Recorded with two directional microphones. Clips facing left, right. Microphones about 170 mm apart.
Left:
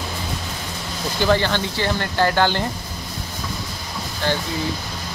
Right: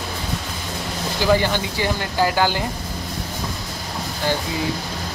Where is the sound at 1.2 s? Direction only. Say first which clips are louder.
Even; 10° right (ahead or behind).